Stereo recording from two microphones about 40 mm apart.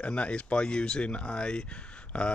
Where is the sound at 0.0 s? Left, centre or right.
Left.